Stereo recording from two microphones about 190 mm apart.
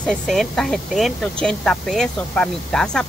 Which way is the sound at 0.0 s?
Centre (ahead or behind).